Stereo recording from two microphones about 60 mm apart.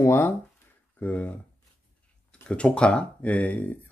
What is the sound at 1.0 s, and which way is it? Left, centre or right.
Speech, left.